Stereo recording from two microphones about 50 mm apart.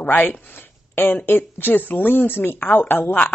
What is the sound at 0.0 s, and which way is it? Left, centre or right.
A woman's voice, left.